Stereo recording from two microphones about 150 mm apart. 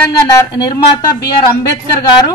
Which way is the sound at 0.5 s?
25° left (ahead or behind).